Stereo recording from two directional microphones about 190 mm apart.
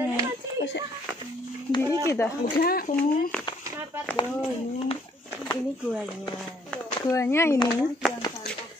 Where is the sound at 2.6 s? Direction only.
50° left (ahead or behind).